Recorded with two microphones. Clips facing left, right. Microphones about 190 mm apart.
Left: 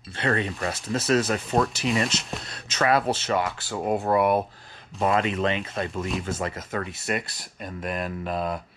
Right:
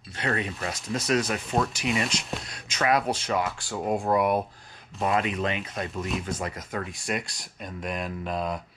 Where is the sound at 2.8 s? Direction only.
30° left (ahead or behind).